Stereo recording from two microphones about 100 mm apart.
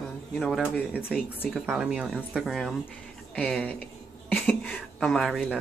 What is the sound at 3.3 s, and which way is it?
Speech, 10° left (ahead or behind).